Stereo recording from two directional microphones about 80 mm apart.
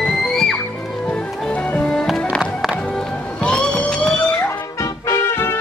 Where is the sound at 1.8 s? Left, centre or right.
Centre.